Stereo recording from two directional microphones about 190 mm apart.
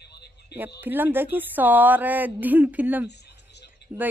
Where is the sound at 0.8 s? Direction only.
10° right (ahead or behind).